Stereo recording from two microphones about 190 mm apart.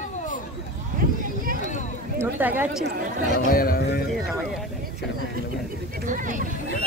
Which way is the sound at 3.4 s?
50° left (ahead or behind).